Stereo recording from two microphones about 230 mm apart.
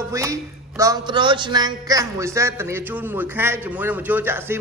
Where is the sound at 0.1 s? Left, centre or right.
Centre.